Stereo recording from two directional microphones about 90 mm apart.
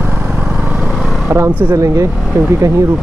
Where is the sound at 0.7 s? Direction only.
20° right (ahead or behind).